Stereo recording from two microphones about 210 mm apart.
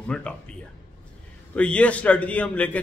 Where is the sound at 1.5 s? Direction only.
5° left (ahead or behind).